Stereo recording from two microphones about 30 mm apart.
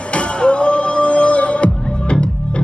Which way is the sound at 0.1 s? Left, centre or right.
Left.